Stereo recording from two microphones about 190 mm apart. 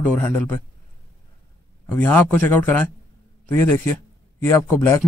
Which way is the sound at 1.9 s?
10° left (ahead or behind).